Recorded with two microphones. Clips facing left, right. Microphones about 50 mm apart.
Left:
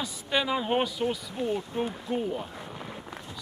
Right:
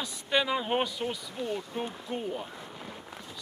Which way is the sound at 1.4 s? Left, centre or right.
Left.